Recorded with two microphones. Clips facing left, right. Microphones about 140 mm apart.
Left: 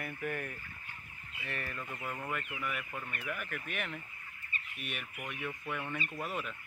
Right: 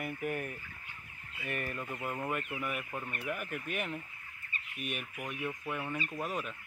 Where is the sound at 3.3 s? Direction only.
35° right (ahead or behind).